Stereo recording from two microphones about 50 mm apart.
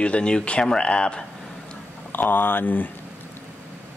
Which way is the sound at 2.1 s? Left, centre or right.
Left.